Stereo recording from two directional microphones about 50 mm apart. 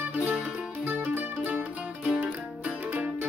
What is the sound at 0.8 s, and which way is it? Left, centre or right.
Mandolin, right.